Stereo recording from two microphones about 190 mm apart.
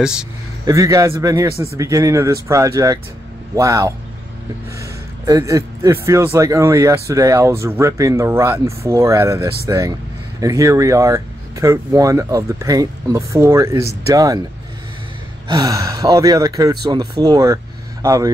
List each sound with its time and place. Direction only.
0.0 s speech: 5° right (ahead or behind)
0.7 s speech: 15° right (ahead or behind)
15.4 s speech: 20° right (ahead or behind)